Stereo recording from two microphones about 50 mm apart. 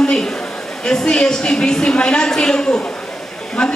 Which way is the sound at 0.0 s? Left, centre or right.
Centre.